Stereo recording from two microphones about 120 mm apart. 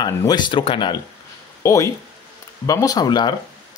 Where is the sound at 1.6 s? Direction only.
25° left (ahead or behind).